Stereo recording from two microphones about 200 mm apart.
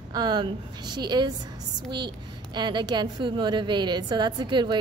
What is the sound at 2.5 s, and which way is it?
A woman's voice, 20° right (ahead or behind).